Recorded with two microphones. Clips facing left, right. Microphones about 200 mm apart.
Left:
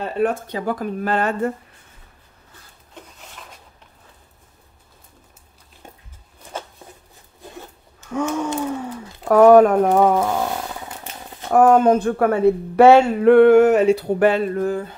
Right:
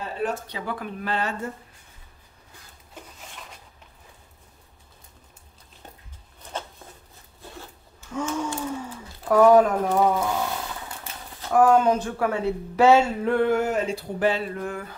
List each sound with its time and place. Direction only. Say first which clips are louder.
0.0 s speech: left 7 dB; 55° left (ahead or behind)
2.9 s rub: left 1 dB; centre (ahead or behind)
8.1 s a sound: left 5 dB; 65° left (ahead or behind)
11.5 s speech: left 5 dB; 50° left (ahead or behind); by 15.0 s 30° left (ahead or behind)